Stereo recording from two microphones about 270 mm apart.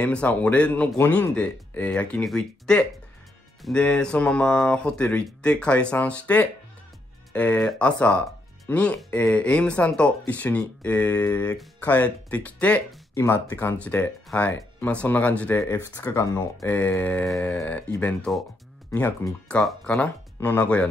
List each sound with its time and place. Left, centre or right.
0.0 s speech: centre